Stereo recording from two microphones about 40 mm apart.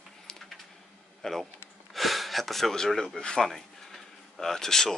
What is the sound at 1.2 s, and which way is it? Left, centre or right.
Speech, centre.